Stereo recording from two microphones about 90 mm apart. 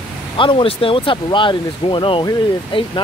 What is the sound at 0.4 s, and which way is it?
Speech, 75° left (ahead or behind).